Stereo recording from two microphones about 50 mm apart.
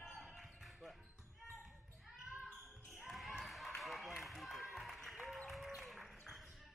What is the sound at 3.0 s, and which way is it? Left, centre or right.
Basketball bounce, centre.